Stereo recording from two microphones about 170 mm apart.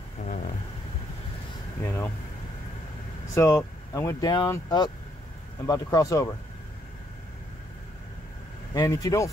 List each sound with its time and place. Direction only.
1.8 s speech: 15° left (ahead or behind)
3.3 s speech: 20° left (ahead or behind)
8.7 s speech: 20° left (ahead or behind)